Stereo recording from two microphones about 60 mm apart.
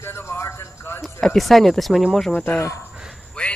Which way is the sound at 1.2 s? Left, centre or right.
Centre.